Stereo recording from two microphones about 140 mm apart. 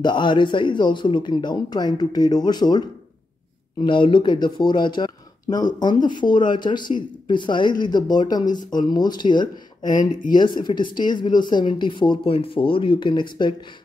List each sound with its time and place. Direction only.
0.0 s speech: 35° left (ahead or behind)
3.8 s speech: 35° left (ahead or behind)